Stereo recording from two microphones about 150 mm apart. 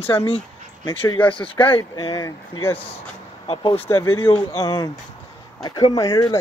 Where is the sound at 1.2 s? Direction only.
35° left (ahead or behind).